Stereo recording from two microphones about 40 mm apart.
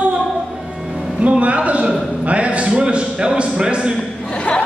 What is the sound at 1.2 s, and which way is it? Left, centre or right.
A man's voice, right.